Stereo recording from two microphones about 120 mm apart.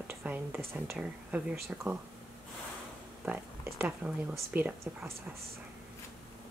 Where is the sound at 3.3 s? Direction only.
20° right (ahead or behind).